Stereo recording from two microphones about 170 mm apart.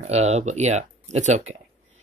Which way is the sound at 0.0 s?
40° right (ahead or behind).